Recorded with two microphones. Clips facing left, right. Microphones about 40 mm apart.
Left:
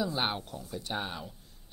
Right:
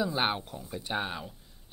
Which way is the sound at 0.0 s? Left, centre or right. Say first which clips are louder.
Right 2 dB; centre.